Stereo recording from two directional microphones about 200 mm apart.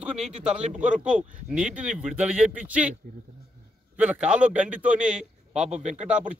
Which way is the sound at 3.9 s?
5° right (ahead or behind).